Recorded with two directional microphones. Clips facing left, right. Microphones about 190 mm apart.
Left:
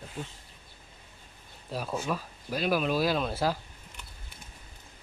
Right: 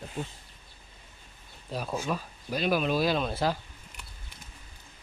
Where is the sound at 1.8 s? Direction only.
5° right (ahead or behind).